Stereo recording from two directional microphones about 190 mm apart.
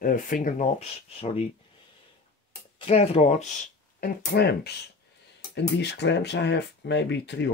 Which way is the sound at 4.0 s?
60° left (ahead or behind).